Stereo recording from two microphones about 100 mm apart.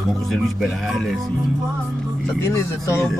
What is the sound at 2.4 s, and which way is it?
Speech, 30° left (ahead or behind).